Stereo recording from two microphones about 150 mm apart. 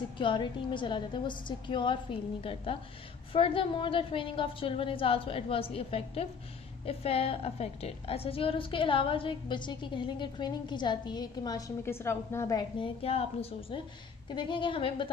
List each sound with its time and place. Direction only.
0.2 s a woman's voice: 35° left (ahead or behind)
12.7 s a woman's voice: 40° left (ahead or behind)